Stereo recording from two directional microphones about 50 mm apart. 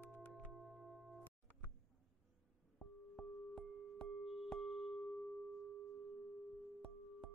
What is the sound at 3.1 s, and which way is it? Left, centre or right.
Music, centre.